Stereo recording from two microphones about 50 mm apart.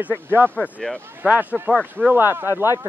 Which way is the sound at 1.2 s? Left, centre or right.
Right.